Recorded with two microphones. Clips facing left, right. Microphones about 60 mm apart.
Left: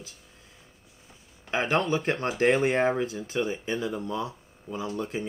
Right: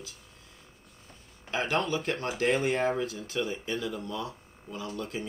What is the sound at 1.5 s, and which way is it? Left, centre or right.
Speech, left.